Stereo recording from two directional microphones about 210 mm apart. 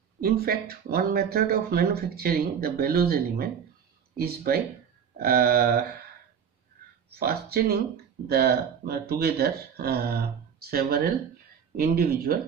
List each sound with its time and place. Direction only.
0.2 s speech: 50° right (ahead or behind)
7.1 s speech: 50° right (ahead or behind)